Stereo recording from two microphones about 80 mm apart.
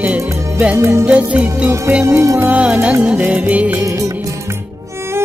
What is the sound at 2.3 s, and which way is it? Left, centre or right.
Music, centre.